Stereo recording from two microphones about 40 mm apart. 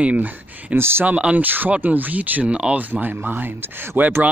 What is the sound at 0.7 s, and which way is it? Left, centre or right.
Speech, right.